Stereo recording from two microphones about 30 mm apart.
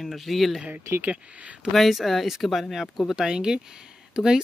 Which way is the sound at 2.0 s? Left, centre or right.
Centre.